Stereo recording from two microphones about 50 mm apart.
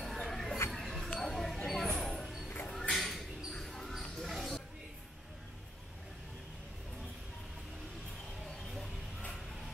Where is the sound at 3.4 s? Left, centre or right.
Centre.